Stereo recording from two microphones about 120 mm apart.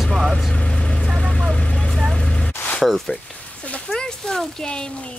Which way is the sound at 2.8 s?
Centre (ahead or behind).